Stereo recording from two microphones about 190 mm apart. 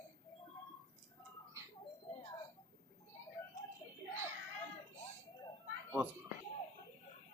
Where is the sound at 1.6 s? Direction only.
15° right (ahead or behind).